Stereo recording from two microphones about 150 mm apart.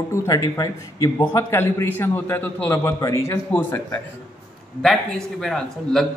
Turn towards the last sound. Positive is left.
turn(degrees=0)  # may be behind; listen again after turning